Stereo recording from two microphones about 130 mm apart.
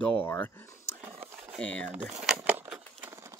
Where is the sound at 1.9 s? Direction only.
10° right (ahead or behind).